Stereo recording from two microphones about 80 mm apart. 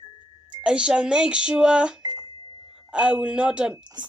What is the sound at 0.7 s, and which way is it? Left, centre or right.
Speech, centre.